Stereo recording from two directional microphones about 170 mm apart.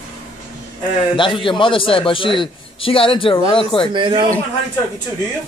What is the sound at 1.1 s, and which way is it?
A man's voice, 30° left (ahead or behind).